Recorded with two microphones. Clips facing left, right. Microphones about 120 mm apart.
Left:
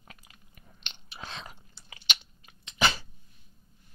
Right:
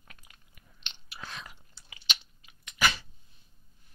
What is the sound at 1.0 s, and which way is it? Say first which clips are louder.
Whispering: left 2 dB; 20° left (ahead or behind).